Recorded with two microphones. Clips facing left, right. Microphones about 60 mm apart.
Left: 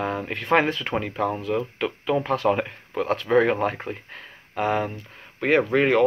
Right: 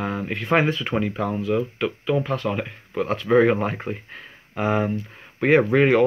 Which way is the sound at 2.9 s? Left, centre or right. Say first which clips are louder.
Right 2 dB; centre.